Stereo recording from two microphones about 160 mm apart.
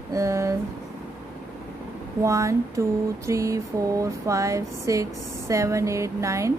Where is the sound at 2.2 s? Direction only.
20° right (ahead or behind).